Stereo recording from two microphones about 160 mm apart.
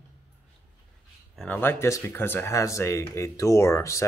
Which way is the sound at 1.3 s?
10° left (ahead or behind).